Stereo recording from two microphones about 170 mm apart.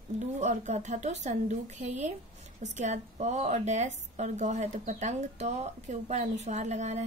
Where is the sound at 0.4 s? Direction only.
45° right (ahead or behind).